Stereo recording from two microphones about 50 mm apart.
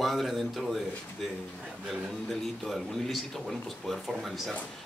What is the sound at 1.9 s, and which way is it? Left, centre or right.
Speech, centre.